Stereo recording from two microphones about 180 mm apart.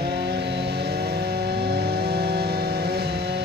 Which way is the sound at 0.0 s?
65° right (ahead or behind).